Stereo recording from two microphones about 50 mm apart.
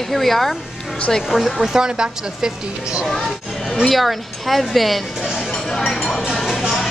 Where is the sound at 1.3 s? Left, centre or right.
Centre.